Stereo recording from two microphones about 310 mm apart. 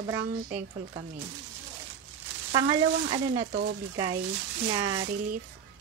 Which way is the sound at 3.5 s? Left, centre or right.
Right.